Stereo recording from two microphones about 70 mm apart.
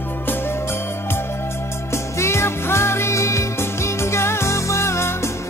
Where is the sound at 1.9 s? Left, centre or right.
Left.